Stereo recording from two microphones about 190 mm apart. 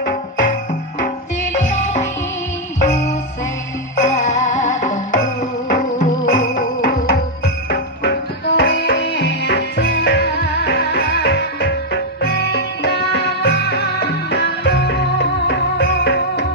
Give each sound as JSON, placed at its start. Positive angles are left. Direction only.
{"t": 0.0, "sound": "music", "side_deg": 45}
{"t": 4.0, "sound": "music", "side_deg": 40}
{"t": 7.7, "sound": "music", "side_deg": 65}